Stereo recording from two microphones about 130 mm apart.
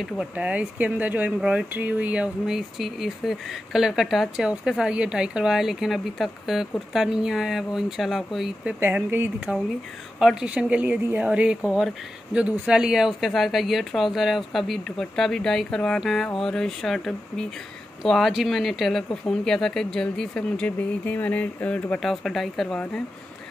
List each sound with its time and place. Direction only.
0.0 s speech: 5° right (ahead or behind)
8.7 s speech: 15° right (ahead or behind); by 23.0 s 5° left (ahead or behind)